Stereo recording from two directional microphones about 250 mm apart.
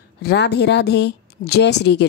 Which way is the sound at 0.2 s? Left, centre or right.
Left.